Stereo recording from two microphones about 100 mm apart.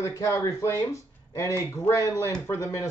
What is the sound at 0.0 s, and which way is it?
A man's voice, 35° left (ahead or behind).